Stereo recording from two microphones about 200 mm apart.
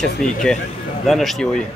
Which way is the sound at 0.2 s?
Centre (ahead or behind).